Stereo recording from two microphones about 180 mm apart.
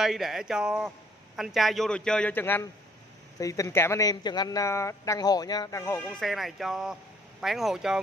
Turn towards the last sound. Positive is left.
turn(degrees=-5)  # may be behind; listen again after turning